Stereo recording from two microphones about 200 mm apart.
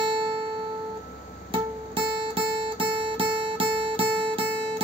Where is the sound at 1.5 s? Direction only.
25° right (ahead or behind).